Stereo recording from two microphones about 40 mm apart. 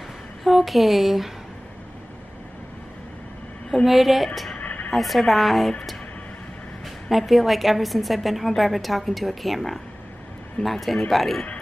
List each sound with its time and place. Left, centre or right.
0.4 s speech: centre
3.8 s a woman's voice: centre
4.6 s a sound: left
4.9 s a woman's voice: centre
7.1 s a woman's voice: centre